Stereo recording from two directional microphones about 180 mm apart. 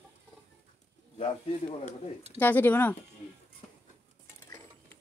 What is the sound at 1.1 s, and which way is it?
Speech, 40° left (ahead or behind).